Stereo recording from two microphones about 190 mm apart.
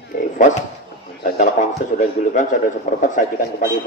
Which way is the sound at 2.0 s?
45° left (ahead or behind).